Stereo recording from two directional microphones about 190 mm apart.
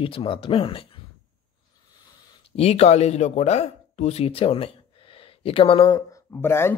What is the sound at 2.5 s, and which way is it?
Speech, 30° left (ahead or behind).